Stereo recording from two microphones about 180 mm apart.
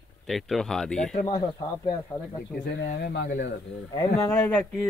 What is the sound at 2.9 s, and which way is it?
Speech, 65° left (ahead or behind).